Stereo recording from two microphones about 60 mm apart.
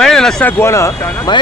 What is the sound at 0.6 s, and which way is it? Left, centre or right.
Speech, left.